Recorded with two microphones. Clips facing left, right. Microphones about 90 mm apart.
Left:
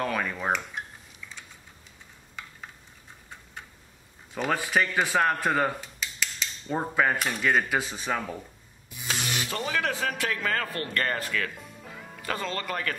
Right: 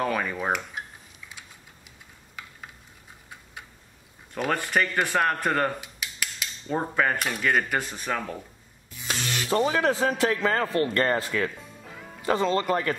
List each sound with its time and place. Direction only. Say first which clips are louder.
0.0 s speech: right 2 dB; centre (ahead or behind)
4.3 s speech: right 1 dB; centre (ahead or behind)
5.8 s cutlery: left 1 dB; 10° right (ahead or behind)
6.7 s speech: even; 5° left (ahead or behind)
9.5 s a man's voice: right 9 dB; 30° right (ahead or behind)
11.8 s music: even; centre (ahead or behind)
12.2 s a man's voice: right 8 dB; 20° right (ahead or behind)